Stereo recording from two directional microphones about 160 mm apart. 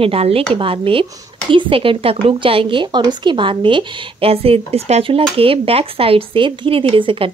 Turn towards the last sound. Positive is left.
turn(degrees=-35)  # may be behind; listen again after turning